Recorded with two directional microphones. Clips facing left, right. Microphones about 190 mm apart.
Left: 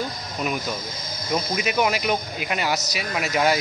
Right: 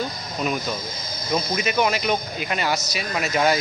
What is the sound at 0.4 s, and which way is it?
Speech, 10° left (ahead or behind).